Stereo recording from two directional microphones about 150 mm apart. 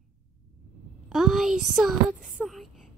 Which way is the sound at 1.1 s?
Centre (ahead or behind).